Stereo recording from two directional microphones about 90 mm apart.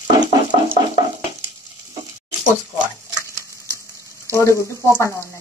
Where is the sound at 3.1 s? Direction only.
35° right (ahead or behind).